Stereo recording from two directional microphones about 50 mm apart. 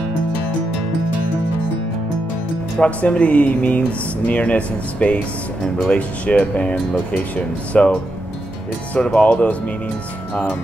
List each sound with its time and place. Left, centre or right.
2.8 s speech: left
9.0 s speech: left